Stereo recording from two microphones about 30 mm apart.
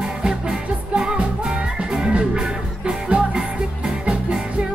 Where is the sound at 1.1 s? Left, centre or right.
Right.